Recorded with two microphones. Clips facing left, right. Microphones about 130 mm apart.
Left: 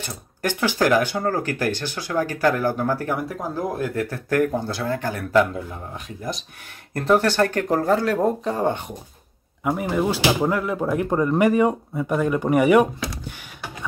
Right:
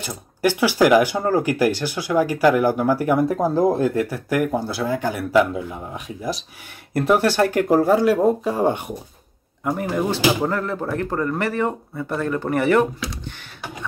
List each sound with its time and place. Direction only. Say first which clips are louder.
0.0 s speech: right 6 dB; 10° right (ahead or behind)
3.5 s speech: right 5 dB; 25° right (ahead or behind); by 8.9 s 10° right (ahead or behind)
9.6 s speech: even; 5° left (ahead or behind)